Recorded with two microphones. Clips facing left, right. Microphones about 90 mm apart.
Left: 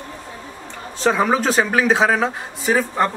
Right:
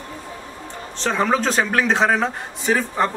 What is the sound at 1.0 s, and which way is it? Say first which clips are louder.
A man's voice: left 2 dB; 5° left (ahead or behind).